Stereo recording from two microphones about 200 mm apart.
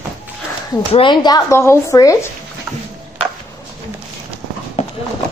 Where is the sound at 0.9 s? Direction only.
25° left (ahead or behind).